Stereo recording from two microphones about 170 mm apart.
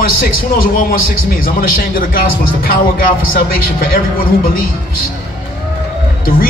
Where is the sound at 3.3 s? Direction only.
60° left (ahead or behind).